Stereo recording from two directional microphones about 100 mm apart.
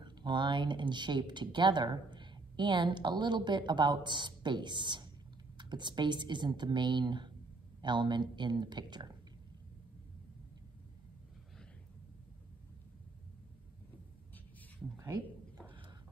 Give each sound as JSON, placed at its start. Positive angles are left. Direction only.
{"t": 0.0, "sound": "speech", "side_deg": -50}